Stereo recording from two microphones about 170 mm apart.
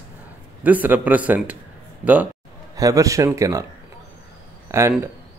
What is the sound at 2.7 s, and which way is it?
Speech, 20° right (ahead or behind).